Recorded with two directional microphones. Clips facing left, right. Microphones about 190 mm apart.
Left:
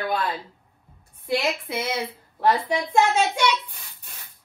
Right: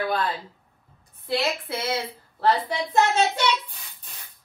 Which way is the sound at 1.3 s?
15° left (ahead or behind).